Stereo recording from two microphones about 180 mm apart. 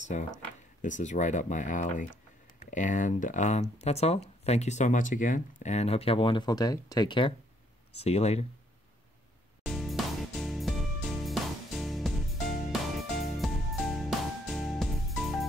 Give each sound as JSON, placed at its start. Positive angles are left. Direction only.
{"t": 0.1, "sound": "speech", "side_deg": 45}
{"t": 9.7, "sound": "music", "side_deg": 0}